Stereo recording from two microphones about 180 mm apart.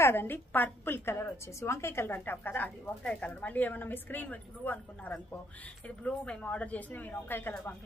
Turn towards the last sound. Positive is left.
turn(degrees=10)  # may be behind; listen again after turning